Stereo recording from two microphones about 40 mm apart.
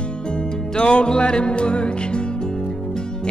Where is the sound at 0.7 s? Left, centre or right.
Left.